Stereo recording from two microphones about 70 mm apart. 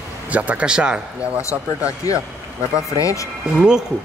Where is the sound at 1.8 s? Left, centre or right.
Left.